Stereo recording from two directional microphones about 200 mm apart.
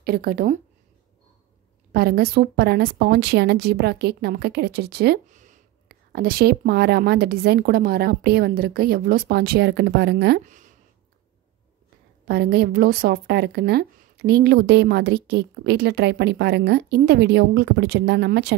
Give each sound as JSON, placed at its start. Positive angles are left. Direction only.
{"t": 0.0, "sound": "speech", "side_deg": -50}
{"t": 1.9, "sound": "speech", "side_deg": -50}
{"t": 5.3, "sound": "speech", "side_deg": -40}
{"t": 10.4, "sound": "a sound", "side_deg": -40}
{"t": 12.3, "sound": "speech", "side_deg": -50}